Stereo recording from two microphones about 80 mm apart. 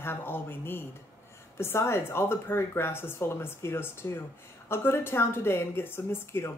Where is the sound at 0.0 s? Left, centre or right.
Left.